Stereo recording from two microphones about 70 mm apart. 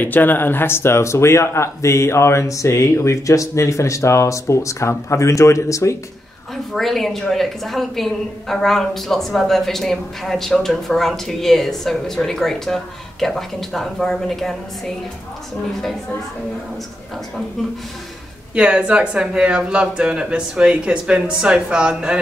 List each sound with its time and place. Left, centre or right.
0.0 s speech: left
6.5 s a woman's voice: centre
18.5 s speech: centre